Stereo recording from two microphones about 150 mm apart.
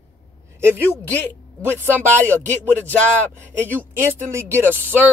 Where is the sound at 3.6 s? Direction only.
15° right (ahead or behind).